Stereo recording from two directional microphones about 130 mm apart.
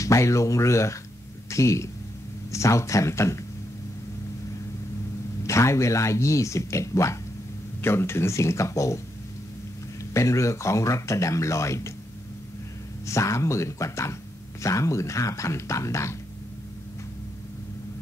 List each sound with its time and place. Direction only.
0.0 s speech: 25° left (ahead or behind)
5.4 s speech: 20° left (ahead or behind)
10.1 s speech: 25° left (ahead or behind)
13.0 s speech: 25° left (ahead or behind)